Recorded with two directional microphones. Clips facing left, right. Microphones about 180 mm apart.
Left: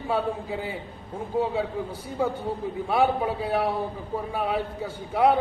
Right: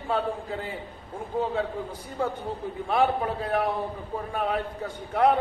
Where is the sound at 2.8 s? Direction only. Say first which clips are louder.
Left 1 dB; 5° left (ahead or behind).